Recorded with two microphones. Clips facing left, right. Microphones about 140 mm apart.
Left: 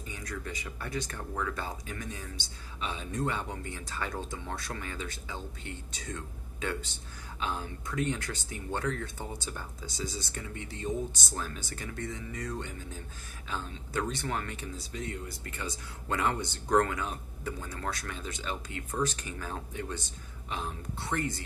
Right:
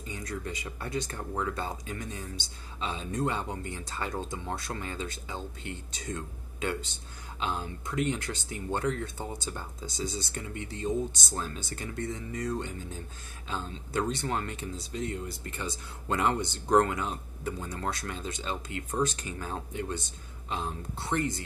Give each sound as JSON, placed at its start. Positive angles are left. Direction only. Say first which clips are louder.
{"t": 0.1, "sound": "speech", "louder": "right 3 dB", "side_deg": -25}
{"t": 7.3, "sound": "speech", "louder": "right 2 dB", "side_deg": -25}
{"t": 21.1, "sound": "speech", "louder": "right 3 dB", "side_deg": -25}